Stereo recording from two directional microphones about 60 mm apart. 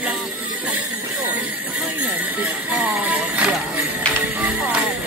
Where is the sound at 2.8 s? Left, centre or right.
Right.